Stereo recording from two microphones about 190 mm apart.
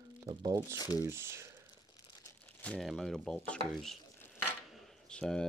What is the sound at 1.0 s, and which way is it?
Speech, 15° right (ahead or behind).